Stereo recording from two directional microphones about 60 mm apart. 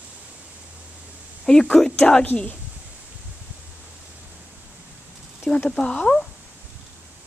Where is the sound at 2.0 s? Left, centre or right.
Centre.